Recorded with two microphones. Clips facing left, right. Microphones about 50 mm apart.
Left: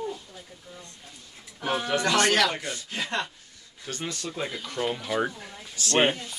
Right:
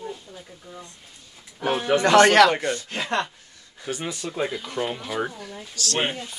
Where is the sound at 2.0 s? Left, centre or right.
Right.